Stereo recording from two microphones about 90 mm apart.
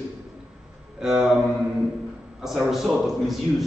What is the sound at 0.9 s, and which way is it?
Speech, 5° right (ahead or behind).